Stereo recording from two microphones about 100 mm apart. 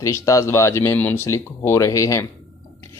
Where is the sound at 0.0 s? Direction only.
35° left (ahead or behind).